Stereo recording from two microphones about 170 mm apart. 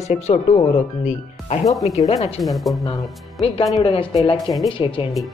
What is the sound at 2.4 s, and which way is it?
Speech, centre (ahead or behind).